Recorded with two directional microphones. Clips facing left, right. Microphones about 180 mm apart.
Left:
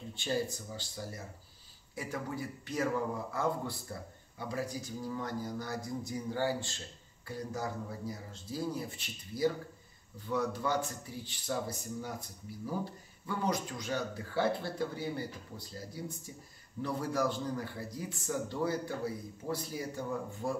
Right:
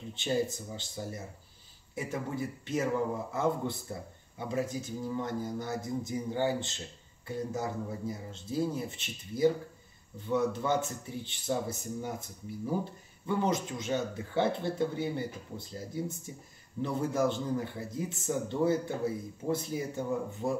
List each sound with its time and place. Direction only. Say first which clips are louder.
0.1 s a man's voice: right 4 dB; 20° right (ahead or behind)
13.3 s a man's voice: right 4 dB; 25° right (ahead or behind)